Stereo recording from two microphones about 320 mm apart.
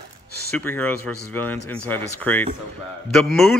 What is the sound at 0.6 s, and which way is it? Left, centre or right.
A man's voice, centre.